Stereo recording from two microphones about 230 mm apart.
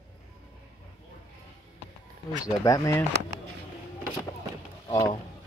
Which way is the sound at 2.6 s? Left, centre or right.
Centre.